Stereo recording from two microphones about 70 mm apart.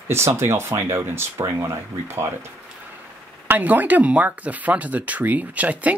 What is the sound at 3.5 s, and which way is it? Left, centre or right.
Speech, right.